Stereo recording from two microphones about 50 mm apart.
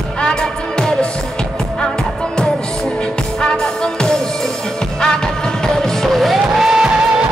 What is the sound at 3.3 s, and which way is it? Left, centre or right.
Music, centre.